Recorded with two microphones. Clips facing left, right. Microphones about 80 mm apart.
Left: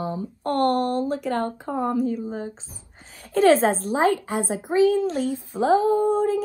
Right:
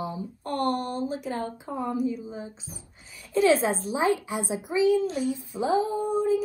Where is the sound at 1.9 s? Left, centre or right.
Left.